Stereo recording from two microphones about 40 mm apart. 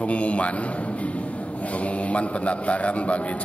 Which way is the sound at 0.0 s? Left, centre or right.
Left.